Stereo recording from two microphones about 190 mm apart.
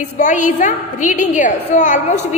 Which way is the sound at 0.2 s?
40° left (ahead or behind).